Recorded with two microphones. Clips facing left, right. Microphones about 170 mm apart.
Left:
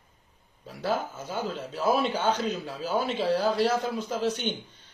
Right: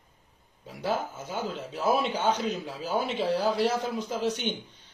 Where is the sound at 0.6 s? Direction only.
15° right (ahead or behind).